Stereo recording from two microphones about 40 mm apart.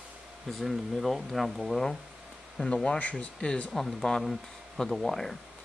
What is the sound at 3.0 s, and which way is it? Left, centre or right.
Speech, left.